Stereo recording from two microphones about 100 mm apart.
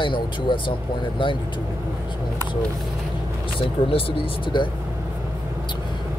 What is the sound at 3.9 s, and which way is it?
Speech, 60° left (ahead or behind).